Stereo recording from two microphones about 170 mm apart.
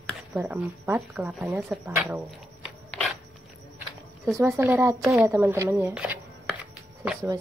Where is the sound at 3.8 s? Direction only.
15° right (ahead or behind).